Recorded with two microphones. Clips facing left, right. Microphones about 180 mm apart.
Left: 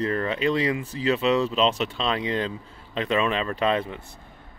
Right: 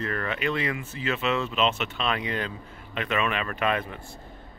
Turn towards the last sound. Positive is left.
turn(degrees=25)  # may be behind; listen again after turning